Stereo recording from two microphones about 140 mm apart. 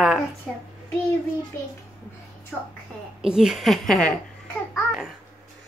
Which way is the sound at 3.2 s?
5° right (ahead or behind).